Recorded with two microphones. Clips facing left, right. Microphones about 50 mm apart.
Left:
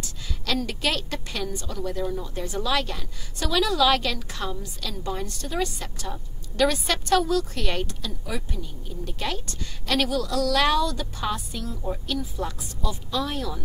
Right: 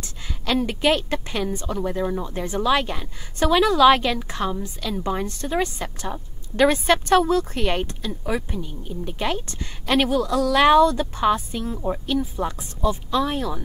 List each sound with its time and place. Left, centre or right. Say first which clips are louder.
0.0 s a woman's voice: right 2 dB; right